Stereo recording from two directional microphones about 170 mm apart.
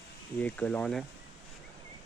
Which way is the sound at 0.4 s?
10° left (ahead or behind).